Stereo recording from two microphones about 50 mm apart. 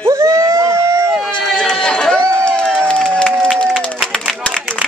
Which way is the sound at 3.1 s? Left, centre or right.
Centre.